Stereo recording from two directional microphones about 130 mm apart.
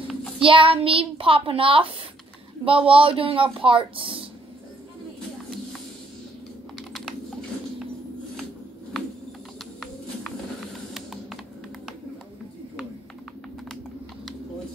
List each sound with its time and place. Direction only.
0.4 s a child's voice: 40° right (ahead or behind)
6.9 s typing: centre (ahead or behind)
10.9 s a sound: centre (ahead or behind)